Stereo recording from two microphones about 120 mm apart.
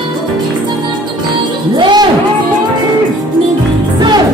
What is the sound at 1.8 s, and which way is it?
Music, 35° right (ahead or behind).